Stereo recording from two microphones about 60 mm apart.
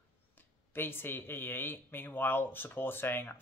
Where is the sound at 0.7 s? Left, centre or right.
Left.